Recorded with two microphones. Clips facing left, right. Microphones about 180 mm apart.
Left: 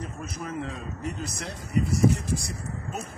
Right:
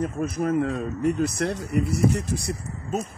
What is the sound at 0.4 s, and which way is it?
Speech, 55° right (ahead or behind).